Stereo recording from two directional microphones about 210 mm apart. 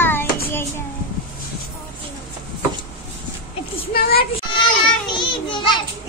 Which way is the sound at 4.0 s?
45° left (ahead or behind).